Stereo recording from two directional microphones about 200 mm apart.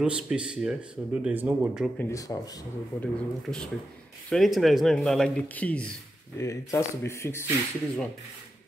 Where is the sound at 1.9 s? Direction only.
15° left (ahead or behind).